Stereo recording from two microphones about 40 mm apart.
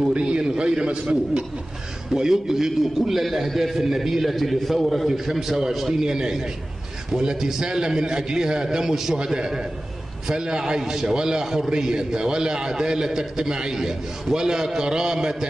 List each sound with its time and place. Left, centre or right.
0.1 s a man's voice: right
2.1 s a man's voice: centre